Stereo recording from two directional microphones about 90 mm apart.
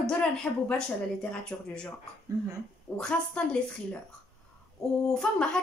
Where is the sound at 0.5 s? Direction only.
20° left (ahead or behind).